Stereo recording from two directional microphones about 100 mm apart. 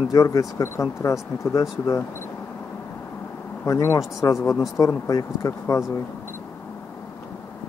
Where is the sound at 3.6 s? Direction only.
30° left (ahead or behind).